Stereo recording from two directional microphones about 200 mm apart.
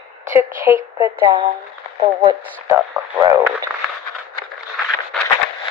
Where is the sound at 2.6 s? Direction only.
15° right (ahead or behind).